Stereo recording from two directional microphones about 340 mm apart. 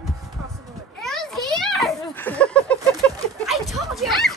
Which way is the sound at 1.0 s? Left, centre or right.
Centre.